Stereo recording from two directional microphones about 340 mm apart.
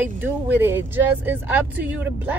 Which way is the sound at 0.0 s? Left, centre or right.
Centre.